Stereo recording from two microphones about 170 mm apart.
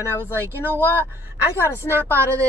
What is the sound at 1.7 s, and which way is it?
Speech, 15° right (ahead or behind).